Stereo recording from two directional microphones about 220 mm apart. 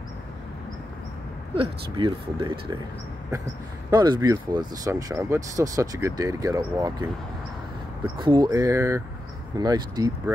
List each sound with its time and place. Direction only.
1.5 s speech: 25° right (ahead or behind)
3.9 s speech: 20° right (ahead or behind)
8.2 s speech: 20° right (ahead or behind)